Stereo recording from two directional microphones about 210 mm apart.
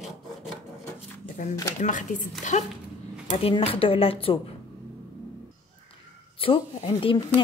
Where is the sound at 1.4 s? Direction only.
35° left (ahead or behind).